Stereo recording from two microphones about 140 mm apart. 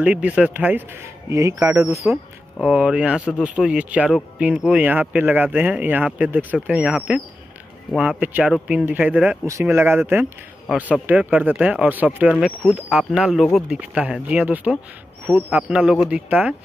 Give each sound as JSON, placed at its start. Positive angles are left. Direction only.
{"t": 0.0, "sound": "speech", "side_deg": -10}